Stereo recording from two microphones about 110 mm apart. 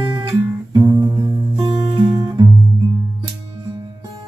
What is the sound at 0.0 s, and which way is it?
Guitar, 40° right (ahead or behind).